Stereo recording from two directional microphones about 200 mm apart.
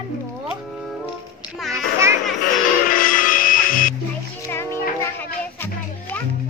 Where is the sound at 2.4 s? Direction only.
45° left (ahead or behind).